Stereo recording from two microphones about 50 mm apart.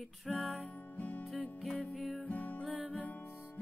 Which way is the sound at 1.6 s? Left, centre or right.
Centre.